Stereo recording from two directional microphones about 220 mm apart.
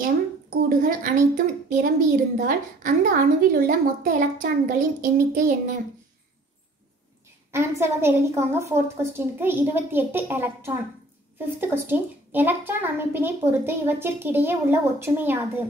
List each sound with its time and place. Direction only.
0.7 s a woman's voice: 40° right (ahead or behind)
7.5 s a child's voice: 10° right (ahead or behind)